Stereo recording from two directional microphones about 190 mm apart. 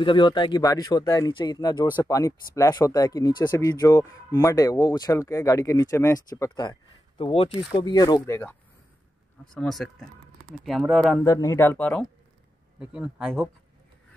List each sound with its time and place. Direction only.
0.0 s speech: 25° left (ahead or behind)
9.5 s speech: centre (ahead or behind)
11.2 s speech: 20° left (ahead or behind)
12.7 s speech: 5° right (ahead or behind)